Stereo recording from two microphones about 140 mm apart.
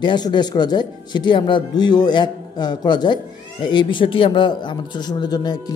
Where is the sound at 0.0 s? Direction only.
30° left (ahead or behind).